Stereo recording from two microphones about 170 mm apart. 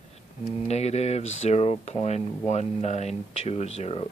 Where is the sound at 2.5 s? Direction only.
40° left (ahead or behind).